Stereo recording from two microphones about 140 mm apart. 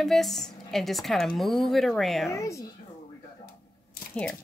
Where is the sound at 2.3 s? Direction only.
20° left (ahead or behind).